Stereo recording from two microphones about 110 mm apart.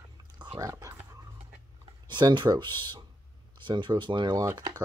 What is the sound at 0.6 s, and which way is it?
Speech, 30° right (ahead or behind).